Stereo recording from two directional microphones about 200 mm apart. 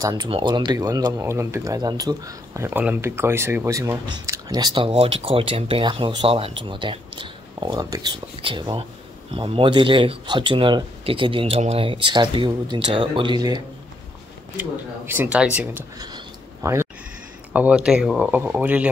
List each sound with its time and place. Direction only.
0.0 s speech: 20° right (ahead or behind)
14.6 s speech: 10° right (ahead or behind)
16.6 s a sound: 15° right (ahead or behind)
17.5 s speech: 5° right (ahead or behind)